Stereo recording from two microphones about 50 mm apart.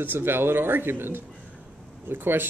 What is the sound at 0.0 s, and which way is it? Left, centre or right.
Speech, right.